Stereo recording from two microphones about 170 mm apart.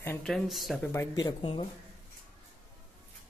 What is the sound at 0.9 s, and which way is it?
Speech, 25° left (ahead or behind).